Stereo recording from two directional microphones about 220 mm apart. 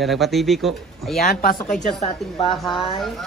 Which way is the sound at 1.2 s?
45° left (ahead or behind).